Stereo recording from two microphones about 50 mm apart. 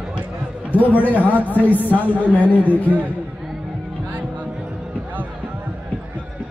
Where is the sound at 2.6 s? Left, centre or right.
Right.